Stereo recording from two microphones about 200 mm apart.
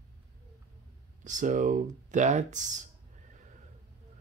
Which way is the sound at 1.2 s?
40° right (ahead or behind).